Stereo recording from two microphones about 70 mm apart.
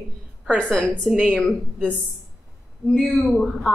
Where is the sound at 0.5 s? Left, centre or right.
Centre.